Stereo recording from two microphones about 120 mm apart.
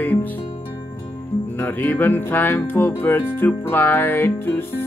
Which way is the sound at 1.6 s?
15° left (ahead or behind).